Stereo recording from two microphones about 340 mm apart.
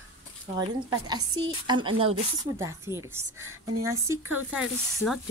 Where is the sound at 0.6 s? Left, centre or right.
Centre.